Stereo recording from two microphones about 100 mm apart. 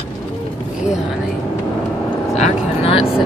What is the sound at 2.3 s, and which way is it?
Vehicle, 80° left.